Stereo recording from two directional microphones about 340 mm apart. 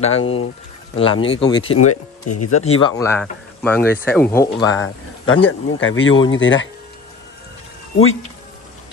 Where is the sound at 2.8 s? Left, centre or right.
Centre.